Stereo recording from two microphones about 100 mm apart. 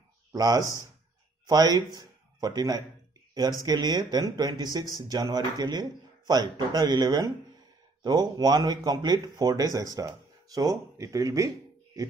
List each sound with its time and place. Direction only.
0.3 s speech: 35° right (ahead or behind)